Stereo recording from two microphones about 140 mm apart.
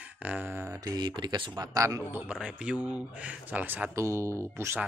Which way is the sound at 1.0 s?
30° right (ahead or behind).